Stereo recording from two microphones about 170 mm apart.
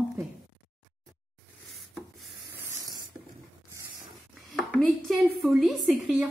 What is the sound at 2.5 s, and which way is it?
Spray, 20° right (ahead or behind).